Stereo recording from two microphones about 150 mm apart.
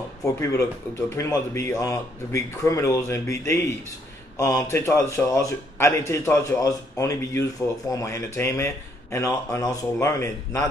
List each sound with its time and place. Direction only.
0.2 s a man's voice: 20° left (ahead or behind)